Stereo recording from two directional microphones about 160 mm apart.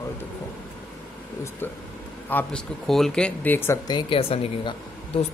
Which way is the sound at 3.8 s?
30° left (ahead or behind).